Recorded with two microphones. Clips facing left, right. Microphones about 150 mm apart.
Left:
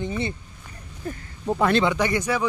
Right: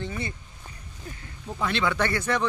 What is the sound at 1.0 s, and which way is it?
Speech, 55° left (ahead or behind).